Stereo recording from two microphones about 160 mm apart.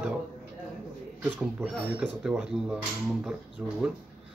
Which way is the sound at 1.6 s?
5° right (ahead or behind).